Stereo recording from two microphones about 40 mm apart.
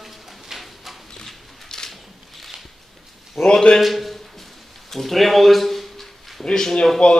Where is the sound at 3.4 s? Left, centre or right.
Centre.